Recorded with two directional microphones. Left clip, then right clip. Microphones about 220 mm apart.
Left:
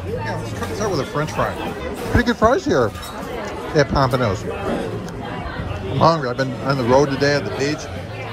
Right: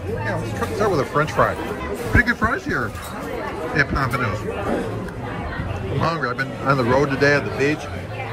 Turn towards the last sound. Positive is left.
turn(degrees=5)  # may be behind; listen again after turning